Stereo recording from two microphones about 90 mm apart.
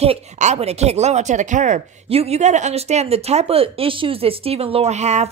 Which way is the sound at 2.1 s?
90° right.